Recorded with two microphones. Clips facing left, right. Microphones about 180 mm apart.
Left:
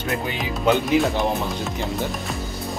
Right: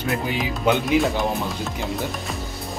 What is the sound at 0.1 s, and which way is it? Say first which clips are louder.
Speech: even; centre (ahead or behind).